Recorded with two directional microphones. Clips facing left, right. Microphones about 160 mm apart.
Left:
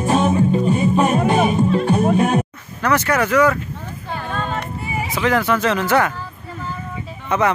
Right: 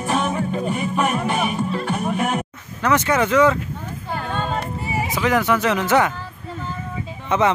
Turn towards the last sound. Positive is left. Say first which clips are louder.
# even
turn(degrees=-20)  # may be behind; listen again after turning